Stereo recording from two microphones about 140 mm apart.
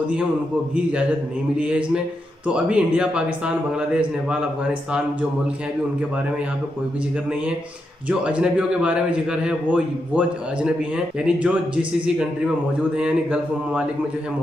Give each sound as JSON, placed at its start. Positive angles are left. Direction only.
{"t": 1.6, "sound": "a man's voice", "side_deg": -10}
{"t": 8.1, "sound": "a man's voice", "side_deg": -10}